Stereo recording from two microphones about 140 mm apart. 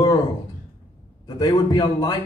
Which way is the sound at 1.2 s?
30° left (ahead or behind).